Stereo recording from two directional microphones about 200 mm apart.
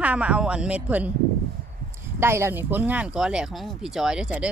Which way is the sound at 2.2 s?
10° right (ahead or behind).